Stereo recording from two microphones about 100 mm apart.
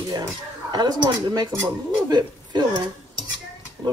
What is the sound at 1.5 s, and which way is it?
Speech, 30° right (ahead or behind).